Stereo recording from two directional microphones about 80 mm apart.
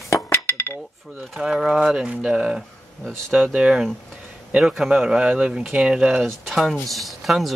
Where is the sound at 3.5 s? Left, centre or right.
Centre.